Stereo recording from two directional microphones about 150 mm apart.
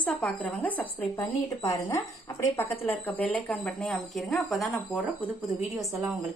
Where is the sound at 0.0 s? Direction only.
10° left (ahead or behind).